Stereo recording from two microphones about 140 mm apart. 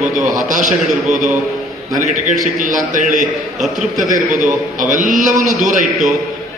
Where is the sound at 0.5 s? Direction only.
65° right (ahead or behind).